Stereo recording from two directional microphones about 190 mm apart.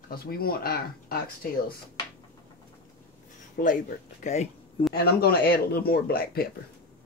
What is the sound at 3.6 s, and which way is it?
Speech, 45° left (ahead or behind).